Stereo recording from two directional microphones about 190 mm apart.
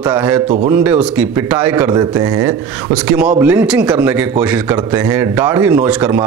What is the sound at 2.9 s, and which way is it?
A man's voice, 5° right (ahead or behind).